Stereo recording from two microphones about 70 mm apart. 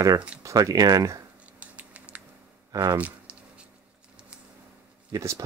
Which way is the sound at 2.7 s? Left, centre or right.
Right.